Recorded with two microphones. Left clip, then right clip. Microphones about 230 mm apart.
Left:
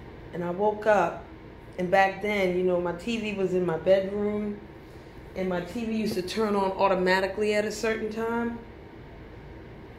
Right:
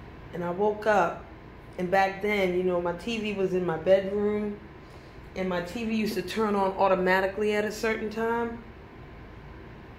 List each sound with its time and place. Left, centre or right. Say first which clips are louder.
0.4 s speech: left 1 dB; centre